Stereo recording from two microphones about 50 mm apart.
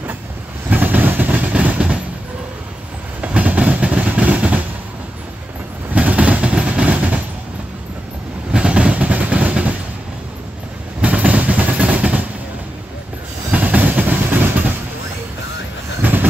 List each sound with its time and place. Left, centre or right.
0.7 s vehicle: right
1.5 s train: right
3.2 s train: right
5.9 s vehicle: right
8.5 s train: right
11.0 s vehicle: right
13.5 s train: right
16.0 s train: right